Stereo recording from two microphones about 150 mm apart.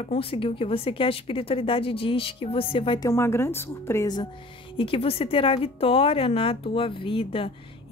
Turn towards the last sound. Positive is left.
turn(degrees=35)  # may be behind; listen again after turning